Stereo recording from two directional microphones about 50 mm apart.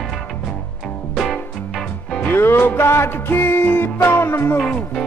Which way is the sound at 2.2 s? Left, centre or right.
Left.